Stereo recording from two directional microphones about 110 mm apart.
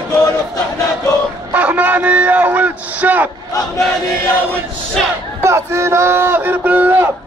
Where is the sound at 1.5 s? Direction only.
15° right (ahead or behind).